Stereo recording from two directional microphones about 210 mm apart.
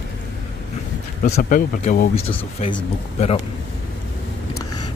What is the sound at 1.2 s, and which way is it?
Speech, 35° left (ahead or behind).